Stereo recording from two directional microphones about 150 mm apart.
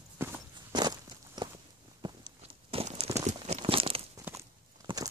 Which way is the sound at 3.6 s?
35° right (ahead or behind).